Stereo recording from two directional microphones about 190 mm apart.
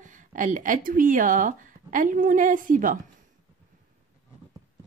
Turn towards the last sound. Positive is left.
turn(degrees=-45)  # may be behind; listen again after turning